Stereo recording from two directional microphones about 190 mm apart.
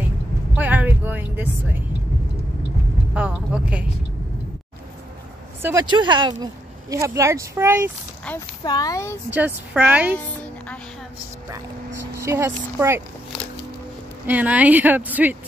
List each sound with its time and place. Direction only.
0.6 s music: 10° right (ahead or behind)
3.2 s speech: 5° right (ahead or behind)
5.6 s speech: 10° right (ahead or behind)
5.9 s speech: 25° right (ahead or behind)
8.3 s speech: 5° left (ahead or behind)
8.6 s speech: 20° left (ahead or behind)
9.3 s speech: 10° right (ahead or behind)
12.2 s speech: 15° right (ahead or behind)
14.2 s speech: 10° right (ahead or behind)